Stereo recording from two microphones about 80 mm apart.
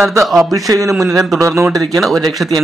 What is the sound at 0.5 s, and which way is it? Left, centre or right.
Speech, right.